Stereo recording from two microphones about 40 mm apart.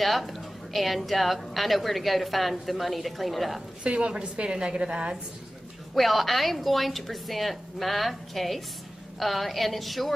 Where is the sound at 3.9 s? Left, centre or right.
Right.